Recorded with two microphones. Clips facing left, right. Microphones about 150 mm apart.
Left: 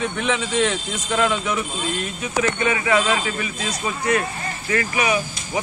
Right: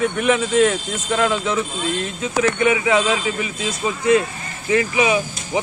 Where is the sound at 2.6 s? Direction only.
15° right (ahead or behind).